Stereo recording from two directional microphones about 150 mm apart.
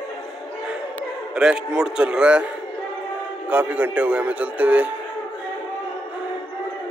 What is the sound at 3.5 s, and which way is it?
A man's voice, 10° right (ahead or behind).